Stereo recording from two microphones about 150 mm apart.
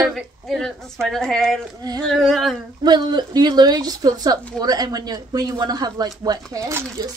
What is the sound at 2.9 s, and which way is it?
A woman's voice, 30° right (ahead or behind).